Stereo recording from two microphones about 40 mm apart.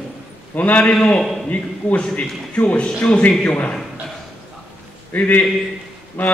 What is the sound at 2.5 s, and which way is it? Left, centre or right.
A man's voice, left.